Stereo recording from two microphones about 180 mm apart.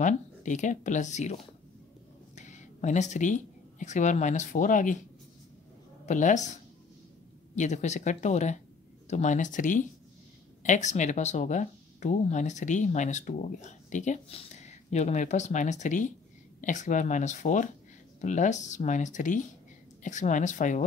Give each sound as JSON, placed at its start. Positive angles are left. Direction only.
{"t": 0.0, "sound": "speech", "side_deg": 45}
{"t": 6.0, "sound": "speech", "side_deg": 45}